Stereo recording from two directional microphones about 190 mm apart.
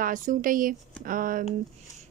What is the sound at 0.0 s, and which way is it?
Speech, 45° right (ahead or behind).